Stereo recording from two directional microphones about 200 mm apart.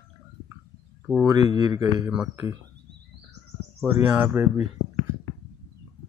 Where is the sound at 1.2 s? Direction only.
20° right (ahead or behind).